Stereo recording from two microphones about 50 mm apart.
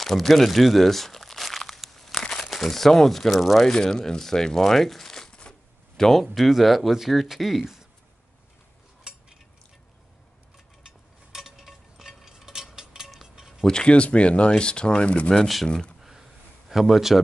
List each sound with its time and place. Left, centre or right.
0.0 s crumpling: centre
2.4 s speech: centre
3.7 s speech: centre
11.3 s a sound: centre
13.1 s cutlery: centre
13.7 s speech: centre
15.4 s speech: centre
16.0 s a sound: centre